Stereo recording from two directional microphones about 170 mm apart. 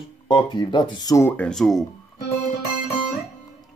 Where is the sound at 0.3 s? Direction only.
25° left (ahead or behind); by 1.9 s centre (ahead or behind).